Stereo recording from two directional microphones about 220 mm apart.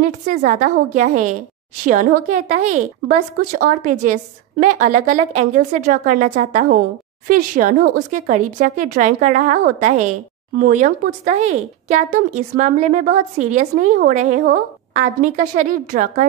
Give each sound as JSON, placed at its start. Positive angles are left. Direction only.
{"t": 0.0, "sound": "speech", "side_deg": -35}